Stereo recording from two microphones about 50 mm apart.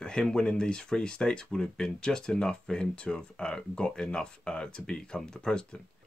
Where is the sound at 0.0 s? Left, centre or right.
Centre.